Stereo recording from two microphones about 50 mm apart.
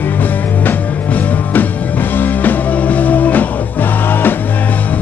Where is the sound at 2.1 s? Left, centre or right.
Left.